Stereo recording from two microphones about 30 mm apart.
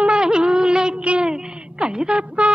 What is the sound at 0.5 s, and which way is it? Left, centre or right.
Music of bollywood, right.